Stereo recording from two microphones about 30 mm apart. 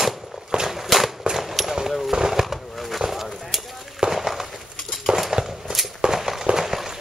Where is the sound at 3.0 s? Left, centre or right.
Centre.